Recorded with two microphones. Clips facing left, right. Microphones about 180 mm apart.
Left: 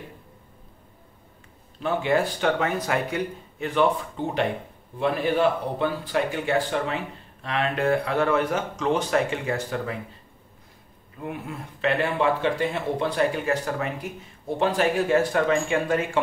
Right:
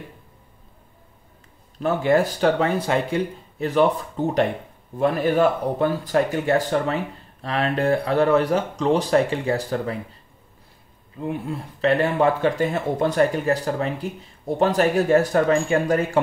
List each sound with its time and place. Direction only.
1.8 s speech: 40° right (ahead or behind)
11.2 s speech: 30° right (ahead or behind)